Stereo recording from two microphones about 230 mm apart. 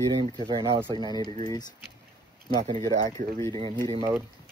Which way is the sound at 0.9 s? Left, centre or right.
Centre.